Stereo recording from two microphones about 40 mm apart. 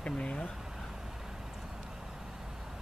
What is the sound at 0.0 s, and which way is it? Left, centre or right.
Speech, left.